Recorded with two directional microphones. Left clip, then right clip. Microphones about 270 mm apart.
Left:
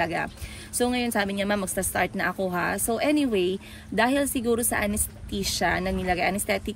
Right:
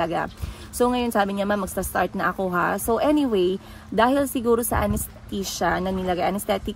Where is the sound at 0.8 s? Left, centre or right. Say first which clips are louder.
Right 4 dB; centre.